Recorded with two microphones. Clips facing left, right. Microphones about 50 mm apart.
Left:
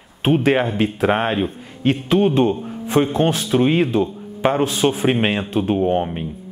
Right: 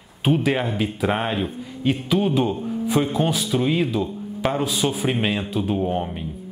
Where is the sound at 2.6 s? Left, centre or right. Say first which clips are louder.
Left 2 dB; centre.